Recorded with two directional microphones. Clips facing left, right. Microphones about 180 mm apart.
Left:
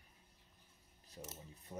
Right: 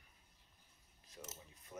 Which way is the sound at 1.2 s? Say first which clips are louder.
Left 2 dB; 35° left (ahead or behind).